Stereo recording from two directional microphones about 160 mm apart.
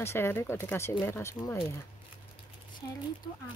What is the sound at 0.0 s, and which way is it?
Speech, 15° left (ahead or behind).